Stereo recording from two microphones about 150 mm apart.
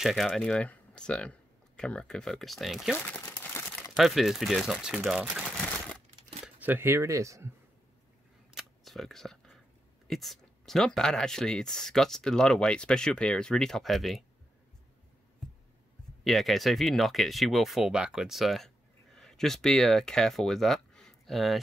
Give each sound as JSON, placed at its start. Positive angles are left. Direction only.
{"t": 0.0, "sound": "speech", "side_deg": -5}
{"t": 5.4, "sound": "crumpling", "side_deg": 10}
{"t": 6.4, "sound": "speech", "side_deg": -10}
{"t": 8.5, "sound": "camera", "side_deg": 0}
{"t": 10.0, "sound": "speech", "side_deg": 0}
{"t": 16.3, "sound": "speech", "side_deg": 0}